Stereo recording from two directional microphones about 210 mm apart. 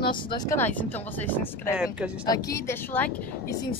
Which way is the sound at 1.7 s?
5° right (ahead or behind).